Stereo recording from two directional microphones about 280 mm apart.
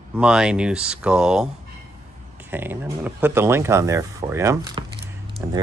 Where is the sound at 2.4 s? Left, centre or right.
Centre.